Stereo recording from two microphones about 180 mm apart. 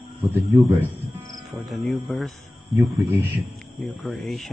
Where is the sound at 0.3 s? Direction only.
15° right (ahead or behind).